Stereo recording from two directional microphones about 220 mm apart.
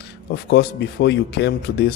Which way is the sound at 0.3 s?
50° left (ahead or behind).